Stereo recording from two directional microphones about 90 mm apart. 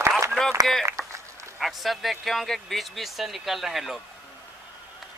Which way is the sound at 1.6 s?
Centre (ahead or behind).